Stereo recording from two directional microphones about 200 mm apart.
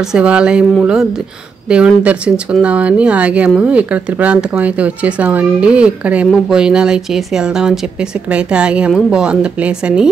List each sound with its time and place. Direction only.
0.0 s speech: 5° right (ahead or behind)